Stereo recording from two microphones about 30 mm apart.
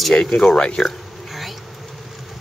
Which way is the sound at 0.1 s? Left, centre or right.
Left.